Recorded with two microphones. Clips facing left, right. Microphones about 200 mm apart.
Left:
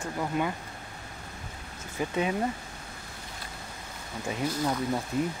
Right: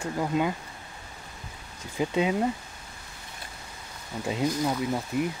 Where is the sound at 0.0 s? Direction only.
15° right (ahead or behind).